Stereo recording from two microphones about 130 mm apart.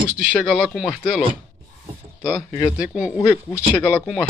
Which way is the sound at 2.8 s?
5° right (ahead or behind).